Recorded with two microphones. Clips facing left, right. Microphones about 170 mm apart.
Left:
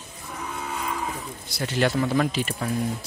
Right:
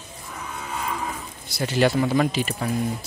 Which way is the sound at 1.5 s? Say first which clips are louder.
Right 3 dB; 5° right (ahead or behind).